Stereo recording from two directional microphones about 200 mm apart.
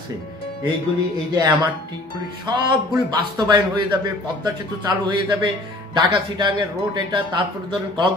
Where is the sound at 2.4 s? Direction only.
20° right (ahead or behind).